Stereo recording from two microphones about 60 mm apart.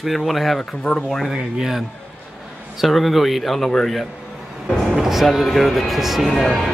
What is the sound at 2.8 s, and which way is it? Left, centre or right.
Speech, centre.